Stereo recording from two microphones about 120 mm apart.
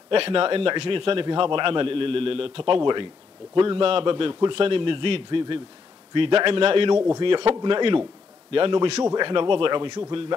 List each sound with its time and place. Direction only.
0.1 s a man's voice: 55° right (ahead or behind)
7.2 s a man's voice: 45° right (ahead or behind)
7.8 s speech: 35° right (ahead or behind)
8.5 s a man's voice: 50° right (ahead or behind)
9.0 s a man's voice: 40° right (ahead or behind)